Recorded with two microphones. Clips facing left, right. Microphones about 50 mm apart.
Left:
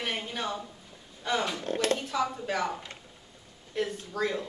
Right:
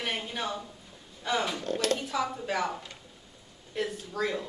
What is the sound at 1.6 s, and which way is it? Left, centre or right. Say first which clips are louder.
Speech: left 1 dB; left.